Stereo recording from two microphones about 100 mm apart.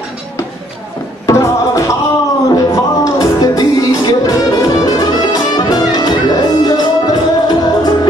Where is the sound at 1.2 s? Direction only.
30° left (ahead or behind).